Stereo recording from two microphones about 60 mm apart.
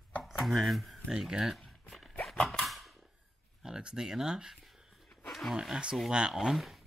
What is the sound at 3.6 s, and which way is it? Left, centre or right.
Speech, centre.